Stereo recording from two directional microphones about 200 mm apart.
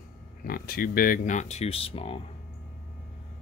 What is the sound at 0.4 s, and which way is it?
Speech, 45° left (ahead or behind).